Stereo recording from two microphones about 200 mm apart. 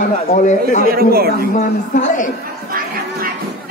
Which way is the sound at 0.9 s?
50° right (ahead or behind).